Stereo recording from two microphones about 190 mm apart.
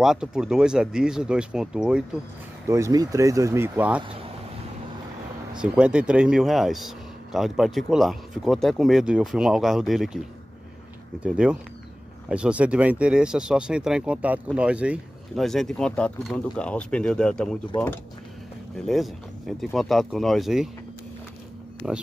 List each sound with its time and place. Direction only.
0.0 s speech: 5° right (ahead or behind)
2.7 s speech: 15° right (ahead or behind)
5.6 s speech: 5° right (ahead or behind)
11.2 s speech: 5° right (ahead or behind)
18.8 s speech: centre (ahead or behind)
21.8 s speech: 5° right (ahead or behind)